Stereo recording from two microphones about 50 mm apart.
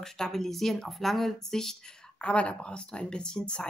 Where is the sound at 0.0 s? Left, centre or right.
Centre.